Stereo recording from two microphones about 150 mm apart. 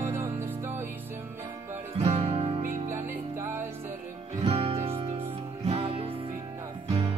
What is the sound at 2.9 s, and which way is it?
Music, 15° right (ahead or behind).